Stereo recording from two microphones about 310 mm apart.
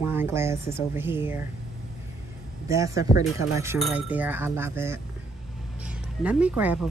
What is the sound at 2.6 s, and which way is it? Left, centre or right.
A woman's voice, centre.